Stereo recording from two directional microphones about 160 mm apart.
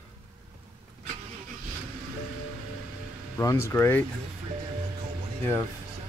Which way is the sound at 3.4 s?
15° left (ahead or behind).